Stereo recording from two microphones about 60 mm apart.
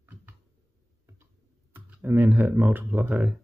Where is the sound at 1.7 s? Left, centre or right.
Right.